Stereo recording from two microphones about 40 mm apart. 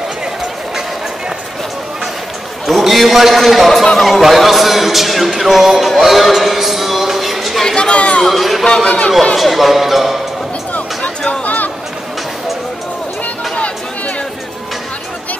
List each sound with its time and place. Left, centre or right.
2.6 s a man's voice: centre
7.6 s chatter: left
8.3 s a man's voice: centre
8.8 s speech: left
9.4 s a man's voice: centre
10.7 s music: left
11.4 s a sound: left
13.2 s chatter: left